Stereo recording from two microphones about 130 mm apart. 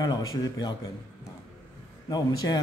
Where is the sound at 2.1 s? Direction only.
30° left (ahead or behind).